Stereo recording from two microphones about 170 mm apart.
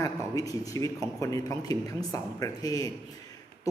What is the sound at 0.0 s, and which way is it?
A man's voice, 20° left (ahead or behind).